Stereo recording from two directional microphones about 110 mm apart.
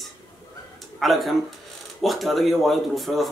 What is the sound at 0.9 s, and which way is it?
A man's voice, centre (ahead or behind).